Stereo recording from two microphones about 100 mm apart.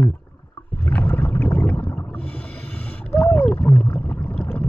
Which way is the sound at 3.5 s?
20° left (ahead or behind).